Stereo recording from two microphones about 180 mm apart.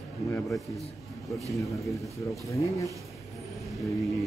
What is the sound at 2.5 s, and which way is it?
Speech, 15° left (ahead or behind).